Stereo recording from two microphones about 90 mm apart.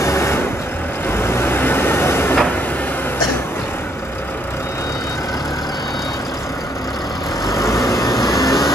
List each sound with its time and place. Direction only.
0.0 s vehicle: 30° left (ahead or behind)
7.4 s vehicle: 35° left (ahead or behind)